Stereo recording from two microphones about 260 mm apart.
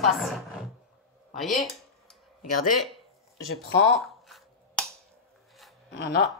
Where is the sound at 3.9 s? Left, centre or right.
Centre.